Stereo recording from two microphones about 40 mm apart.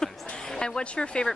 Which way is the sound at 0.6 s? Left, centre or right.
Left.